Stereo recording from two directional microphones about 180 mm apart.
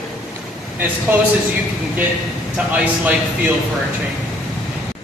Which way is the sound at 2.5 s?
5° right (ahead or behind).